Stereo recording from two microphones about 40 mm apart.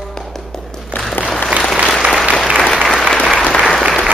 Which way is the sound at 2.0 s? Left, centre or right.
Right.